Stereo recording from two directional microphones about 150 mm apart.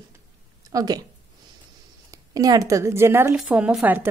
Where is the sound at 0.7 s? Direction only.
25° right (ahead or behind).